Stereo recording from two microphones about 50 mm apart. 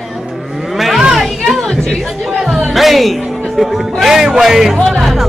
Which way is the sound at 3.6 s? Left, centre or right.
Centre.